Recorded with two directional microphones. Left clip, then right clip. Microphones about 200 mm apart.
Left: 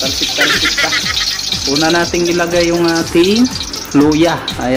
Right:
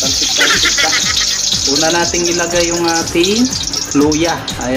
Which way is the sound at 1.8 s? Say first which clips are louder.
Left 1 dB; 15° left (ahead or behind).